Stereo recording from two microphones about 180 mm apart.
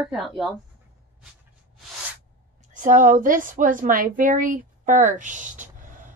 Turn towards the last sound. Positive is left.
turn(degrees=-45)  # may be behind; listen again after turning